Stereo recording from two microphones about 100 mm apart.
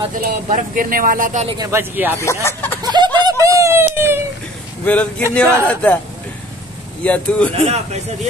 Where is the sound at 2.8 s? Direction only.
45° right (ahead or behind).